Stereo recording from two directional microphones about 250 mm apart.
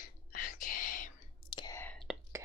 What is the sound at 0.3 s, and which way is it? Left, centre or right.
Whispering, left.